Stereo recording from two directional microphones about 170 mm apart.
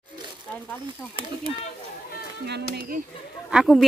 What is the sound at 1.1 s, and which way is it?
Speech, 30° right (ahead or behind).